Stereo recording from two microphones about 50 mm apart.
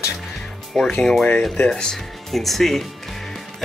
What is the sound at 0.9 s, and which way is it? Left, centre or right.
Speech, centre.